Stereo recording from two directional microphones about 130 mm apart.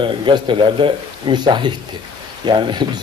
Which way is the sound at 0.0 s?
40° right (ahead or behind).